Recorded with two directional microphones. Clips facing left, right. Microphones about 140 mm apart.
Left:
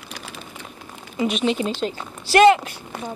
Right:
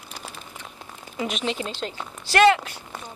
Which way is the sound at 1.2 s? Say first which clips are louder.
Left 6 dB; 5° left (ahead or behind).